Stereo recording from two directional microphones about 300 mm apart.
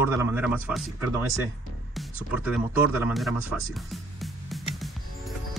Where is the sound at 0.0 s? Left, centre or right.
Centre.